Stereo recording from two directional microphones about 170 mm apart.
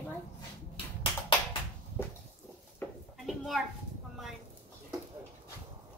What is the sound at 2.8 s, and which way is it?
Sheep, 10° left (ahead or behind).